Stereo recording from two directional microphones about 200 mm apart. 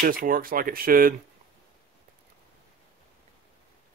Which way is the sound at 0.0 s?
45° right (ahead or behind).